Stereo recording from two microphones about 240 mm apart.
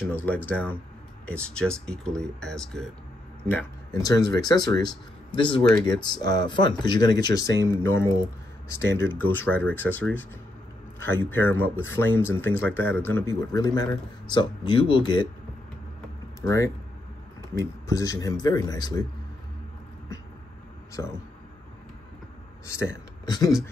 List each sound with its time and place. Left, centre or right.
0.5 s a man's voice: centre
8.8 s speech: right
9.3 s a man's voice: centre
11.2 s a man's voice: centre
16.3 s a man's voice: centre
22.7 s speech: centre